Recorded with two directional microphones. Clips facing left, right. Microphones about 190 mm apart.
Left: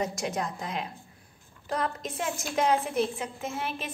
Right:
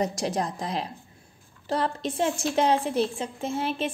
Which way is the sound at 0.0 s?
35° right (ahead or behind).